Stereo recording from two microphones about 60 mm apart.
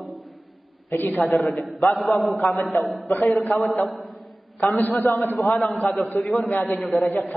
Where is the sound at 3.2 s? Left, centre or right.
Centre.